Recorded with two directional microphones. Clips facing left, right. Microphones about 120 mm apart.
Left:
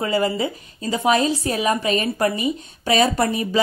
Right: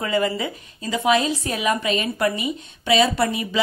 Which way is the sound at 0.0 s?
30° left (ahead or behind).